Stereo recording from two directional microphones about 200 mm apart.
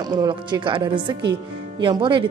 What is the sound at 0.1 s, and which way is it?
Speech, 20° right (ahead or behind).